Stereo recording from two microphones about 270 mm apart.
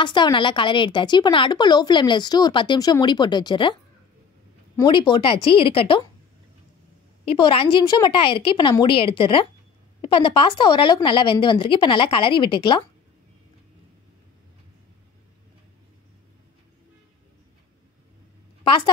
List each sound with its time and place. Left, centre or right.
0.0 s a woman's voice: centre
4.7 s speech: centre
7.3 s speech: centre